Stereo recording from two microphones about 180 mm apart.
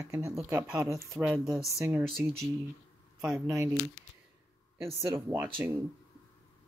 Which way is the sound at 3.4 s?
20° right (ahead or behind).